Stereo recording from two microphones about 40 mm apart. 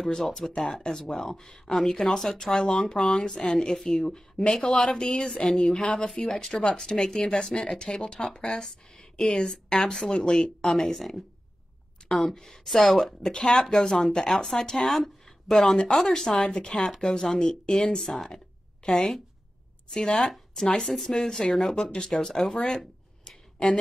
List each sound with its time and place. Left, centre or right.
0.0 s a woman's voice: centre
10.6 s a woman's voice: centre
12.0 s a sound: centre
12.4 s a woman's voice: centre
13.2 s a woman's voice: centre
16.3 s speech: left
18.1 s a woman's voice: centre
18.8 s a woman's voice: left
20.2 s a woman's voice: centre
23.2 s a sound: left